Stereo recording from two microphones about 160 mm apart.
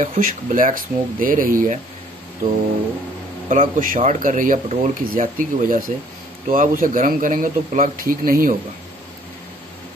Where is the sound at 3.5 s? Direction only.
60° right (ahead or behind).